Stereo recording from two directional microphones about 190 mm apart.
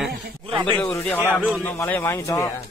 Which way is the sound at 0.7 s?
15° left (ahead or behind).